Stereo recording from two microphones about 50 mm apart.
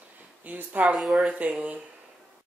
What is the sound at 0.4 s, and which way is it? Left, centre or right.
Speech, right.